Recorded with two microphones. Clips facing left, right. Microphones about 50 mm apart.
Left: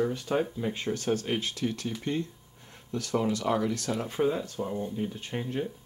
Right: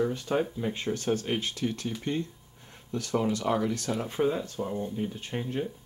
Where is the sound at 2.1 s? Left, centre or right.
Right.